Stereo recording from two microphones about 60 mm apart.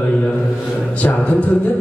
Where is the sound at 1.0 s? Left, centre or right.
Left.